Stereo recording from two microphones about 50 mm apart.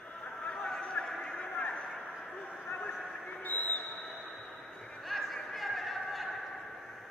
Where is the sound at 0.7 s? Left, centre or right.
Centre.